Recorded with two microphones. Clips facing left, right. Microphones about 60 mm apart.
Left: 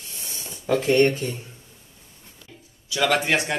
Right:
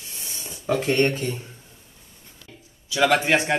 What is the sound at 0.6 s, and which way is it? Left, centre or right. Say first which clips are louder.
Speech: left 2 dB; right.